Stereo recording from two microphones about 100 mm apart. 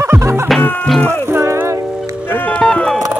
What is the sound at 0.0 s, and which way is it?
Music, 25° right (ahead or behind).